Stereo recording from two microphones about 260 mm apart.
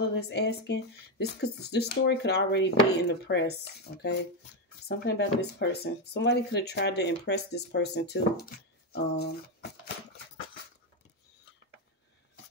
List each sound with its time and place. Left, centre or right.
0.1 s speech: left